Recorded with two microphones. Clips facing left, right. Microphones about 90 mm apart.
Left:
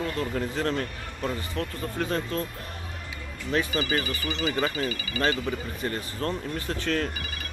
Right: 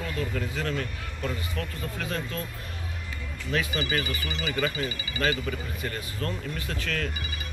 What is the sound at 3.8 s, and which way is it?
Speech, 35° left (ahead or behind).